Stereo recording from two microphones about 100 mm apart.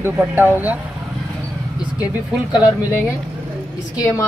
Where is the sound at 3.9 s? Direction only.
35° left (ahead or behind).